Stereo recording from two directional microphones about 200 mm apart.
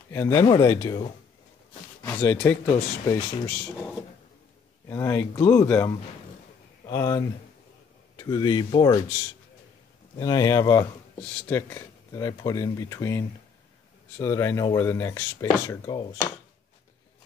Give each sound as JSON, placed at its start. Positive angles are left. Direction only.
{"t": 0.1, "sound": "speech", "side_deg": 15}
{"t": 10.1, "sound": "speech", "side_deg": 20}